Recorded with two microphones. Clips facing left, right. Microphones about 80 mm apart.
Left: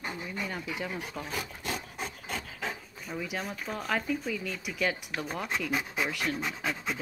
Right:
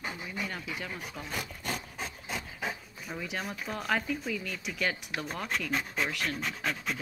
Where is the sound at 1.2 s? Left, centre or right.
Centre.